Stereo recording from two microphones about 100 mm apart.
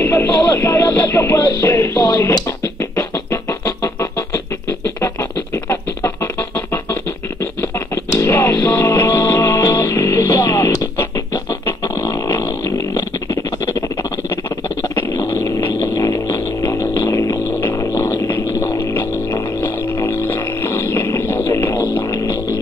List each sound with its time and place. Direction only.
0.0 s music: 20° left (ahead or behind)
7.9 s music: 25° left (ahead or behind)
13.3 s a sound: 35° left (ahead or behind)
15.8 s music: 35° left (ahead or behind)
20.9 s a sound: 30° left (ahead or behind)
22.1 s music: 40° left (ahead or behind)